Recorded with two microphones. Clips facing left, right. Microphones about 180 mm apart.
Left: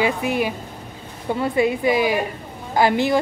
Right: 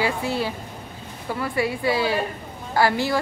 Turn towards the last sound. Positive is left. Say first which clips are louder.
# left 3 dB
turn(degrees=20)  # may be behind; listen again after turning